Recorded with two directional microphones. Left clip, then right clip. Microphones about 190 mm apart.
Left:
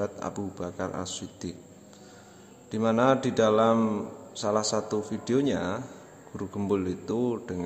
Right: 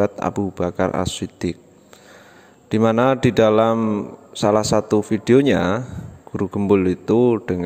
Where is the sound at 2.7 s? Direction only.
45° right (ahead or behind).